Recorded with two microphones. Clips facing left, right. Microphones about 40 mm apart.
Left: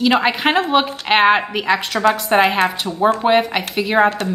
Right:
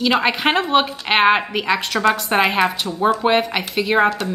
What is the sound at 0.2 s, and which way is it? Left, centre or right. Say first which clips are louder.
A woman's voice: left 1 dB; centre.